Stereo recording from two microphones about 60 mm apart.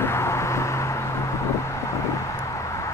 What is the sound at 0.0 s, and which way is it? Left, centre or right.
Vehicle, left.